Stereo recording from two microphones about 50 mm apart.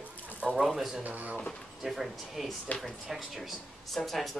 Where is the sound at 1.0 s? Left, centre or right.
Right.